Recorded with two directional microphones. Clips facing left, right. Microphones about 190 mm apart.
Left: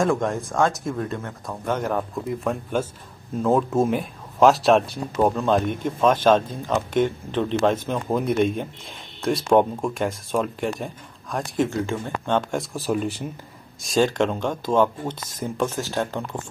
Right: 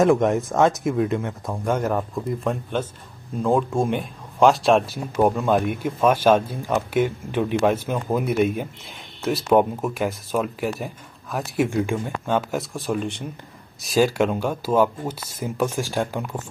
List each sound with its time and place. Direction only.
0.0 s speech: 20° right (ahead or behind)
1.8 s speech: 5° right (ahead or behind)